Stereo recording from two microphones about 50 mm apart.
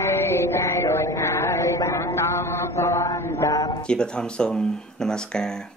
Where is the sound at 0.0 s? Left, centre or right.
Left.